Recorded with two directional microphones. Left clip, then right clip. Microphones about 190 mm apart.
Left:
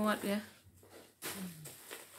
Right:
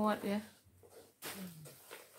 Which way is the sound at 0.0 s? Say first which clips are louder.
Left 1 dB; centre (ahead or behind).